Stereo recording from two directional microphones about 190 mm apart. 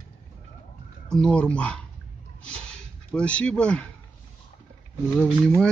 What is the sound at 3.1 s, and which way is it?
Speech, 5° left (ahead or behind).